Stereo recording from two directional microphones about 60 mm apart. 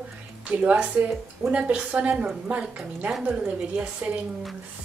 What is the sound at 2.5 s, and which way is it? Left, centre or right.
A woman's voice, right.